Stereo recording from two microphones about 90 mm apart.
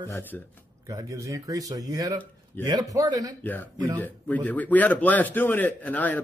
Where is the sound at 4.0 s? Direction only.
20° left (ahead or behind).